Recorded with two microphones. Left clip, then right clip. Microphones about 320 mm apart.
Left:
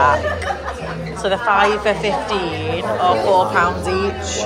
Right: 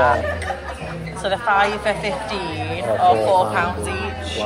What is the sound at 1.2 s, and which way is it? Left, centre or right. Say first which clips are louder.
A woman's voice: left 3 dB; centre.